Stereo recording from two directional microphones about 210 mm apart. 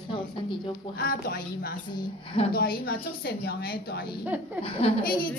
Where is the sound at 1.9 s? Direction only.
25° left (ahead or behind).